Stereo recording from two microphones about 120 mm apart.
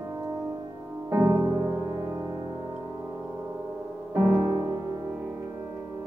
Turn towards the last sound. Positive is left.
turn(degrees=-35)  # may be behind; listen again after turning